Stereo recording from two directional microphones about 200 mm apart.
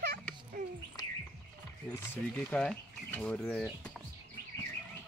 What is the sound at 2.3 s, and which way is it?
Speech, 5° left (ahead or behind).